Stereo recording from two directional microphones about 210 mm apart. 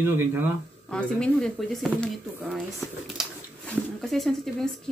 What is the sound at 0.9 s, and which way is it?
Speech, 5° left (ahead or behind).